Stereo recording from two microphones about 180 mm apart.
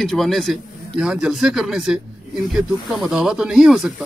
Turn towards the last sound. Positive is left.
turn(degrees=0)  # may be behind; listen again after turning